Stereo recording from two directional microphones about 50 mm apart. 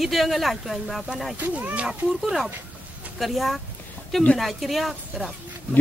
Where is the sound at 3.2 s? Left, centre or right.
Centre.